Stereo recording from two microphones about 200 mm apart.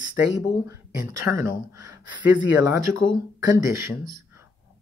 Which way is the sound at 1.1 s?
15° right (ahead or behind).